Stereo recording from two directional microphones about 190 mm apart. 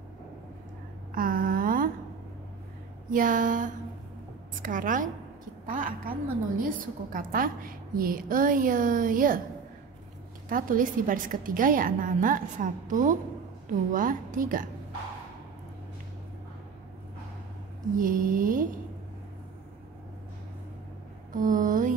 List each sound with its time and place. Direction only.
1.1 s a sound: 50° right (ahead or behind)
3.1 s a woman's voice: 45° right (ahead or behind)
10.5 s a woman's voice: 45° right (ahead or behind)
17.9 s a woman's voice: 45° right (ahead or behind)
21.3 s a woman's voice: 45° right (ahead or behind)